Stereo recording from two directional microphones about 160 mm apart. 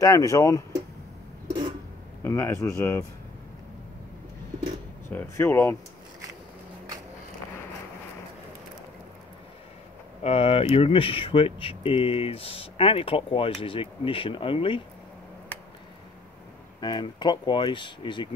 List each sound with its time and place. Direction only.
0.0 s speech: 20° left (ahead or behind)
2.2 s speech: 15° left (ahead or behind)
5.1 s speech: 15° left (ahead or behind)
10.2 s speech: 40° left (ahead or behind)
16.8 s speech: 30° left (ahead or behind)